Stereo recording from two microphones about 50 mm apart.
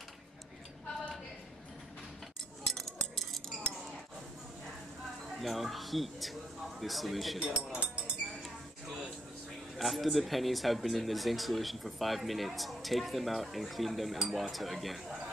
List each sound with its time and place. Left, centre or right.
2.6 s cutlery: centre
5.4 s speech: centre
7.3 s speech: centre
9.8 s speech: centre